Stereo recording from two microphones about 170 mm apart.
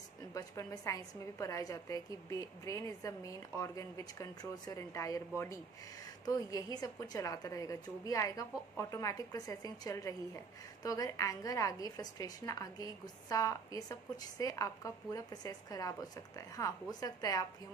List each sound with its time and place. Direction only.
0.3 s a woman's voice: 20° left (ahead or behind)
6.2 s a woman's voice: 25° left (ahead or behind)